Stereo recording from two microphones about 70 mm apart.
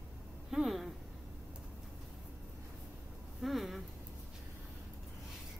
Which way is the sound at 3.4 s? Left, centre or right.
Centre.